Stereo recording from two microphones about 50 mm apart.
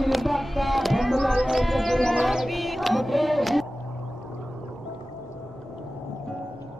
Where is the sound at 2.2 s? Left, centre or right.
Centre.